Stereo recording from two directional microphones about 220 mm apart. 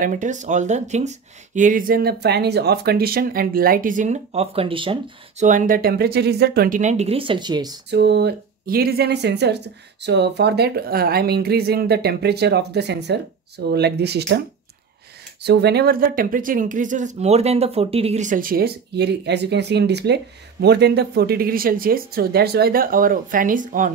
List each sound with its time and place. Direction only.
0.0 s speech: 35° right (ahead or behind)
5.4 s speech: 35° right (ahead or behind); by 7.8 s 20° right (ahead or behind)
7.9 s speech: 50° right (ahead or behind)
15.4 s speech: 50° right (ahead or behind)